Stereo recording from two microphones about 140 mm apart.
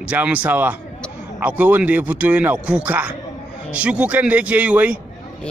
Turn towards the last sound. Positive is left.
turn(degrees=-10)  # may be behind; listen again after turning